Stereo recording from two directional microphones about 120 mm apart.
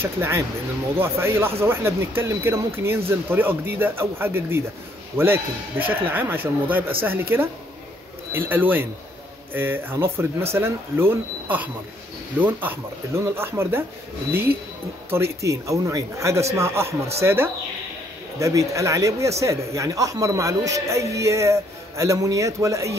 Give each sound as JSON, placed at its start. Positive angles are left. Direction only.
{"t": 0.0, "sound": "speech", "side_deg": -20}
{"t": 15.0, "sound": "speech", "side_deg": -20}